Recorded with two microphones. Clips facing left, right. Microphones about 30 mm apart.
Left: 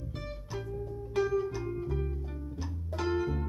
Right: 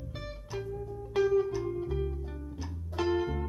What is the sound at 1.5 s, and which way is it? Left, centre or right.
Music, centre.